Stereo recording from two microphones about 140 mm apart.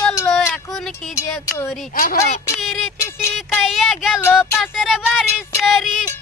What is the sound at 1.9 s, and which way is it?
Speech, 90° left.